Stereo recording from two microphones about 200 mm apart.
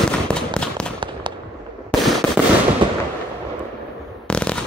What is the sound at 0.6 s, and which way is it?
Fireworks, 5° left (ahead or behind).